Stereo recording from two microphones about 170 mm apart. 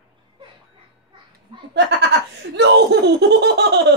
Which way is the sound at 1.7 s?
90° right.